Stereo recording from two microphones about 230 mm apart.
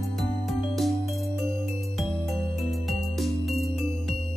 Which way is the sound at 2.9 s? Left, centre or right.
Centre.